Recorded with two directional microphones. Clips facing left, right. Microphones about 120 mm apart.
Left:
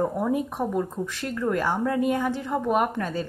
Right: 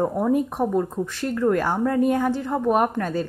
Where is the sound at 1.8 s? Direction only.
40° right (ahead or behind).